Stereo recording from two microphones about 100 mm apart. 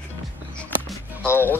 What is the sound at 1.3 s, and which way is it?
Speech, 20° left (ahead or behind).